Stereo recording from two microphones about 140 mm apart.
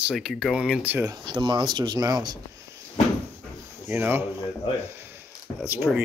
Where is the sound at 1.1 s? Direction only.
35° right (ahead or behind).